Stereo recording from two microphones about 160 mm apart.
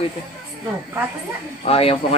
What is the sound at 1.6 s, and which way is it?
Speech, 35° left (ahead or behind).